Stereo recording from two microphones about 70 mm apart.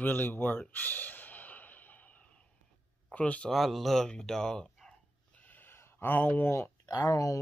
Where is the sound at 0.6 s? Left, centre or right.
Left.